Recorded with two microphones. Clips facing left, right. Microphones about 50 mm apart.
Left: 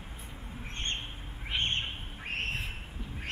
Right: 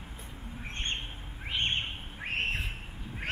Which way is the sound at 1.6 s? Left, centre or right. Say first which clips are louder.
Right 2 dB; centre.